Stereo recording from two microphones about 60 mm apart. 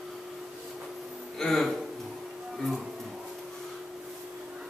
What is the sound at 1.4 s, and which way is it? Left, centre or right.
Music, centre.